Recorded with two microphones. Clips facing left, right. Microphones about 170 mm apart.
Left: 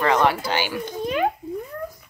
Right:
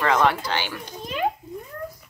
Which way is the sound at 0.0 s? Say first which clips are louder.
Left 1 dB; 5° left (ahead or behind).